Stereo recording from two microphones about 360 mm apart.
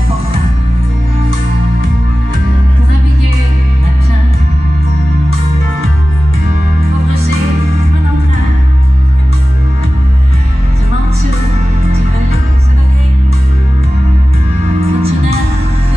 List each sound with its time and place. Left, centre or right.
14.8 s music: centre